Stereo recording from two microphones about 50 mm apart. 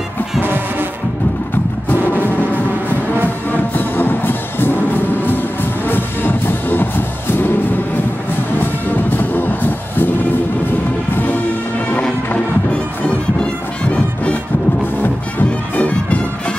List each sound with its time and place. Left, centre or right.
0.4 s music: right
3.5 s music: left
8.5 s music: left
11.1 s music: left
13.4 s music: left